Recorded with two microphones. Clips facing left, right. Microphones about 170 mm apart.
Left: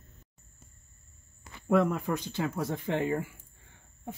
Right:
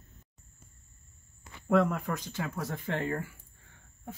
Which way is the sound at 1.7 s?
10° left (ahead or behind).